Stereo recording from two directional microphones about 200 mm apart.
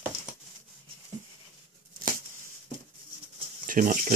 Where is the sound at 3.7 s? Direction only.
40° right (ahead or behind).